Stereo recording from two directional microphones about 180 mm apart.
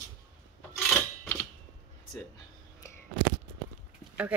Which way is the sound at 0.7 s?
15° left (ahead or behind).